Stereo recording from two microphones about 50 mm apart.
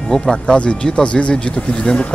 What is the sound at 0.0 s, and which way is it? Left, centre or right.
Speech, centre.